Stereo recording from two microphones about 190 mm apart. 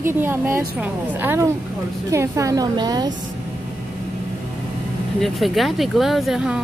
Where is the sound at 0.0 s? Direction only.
10° right (ahead or behind).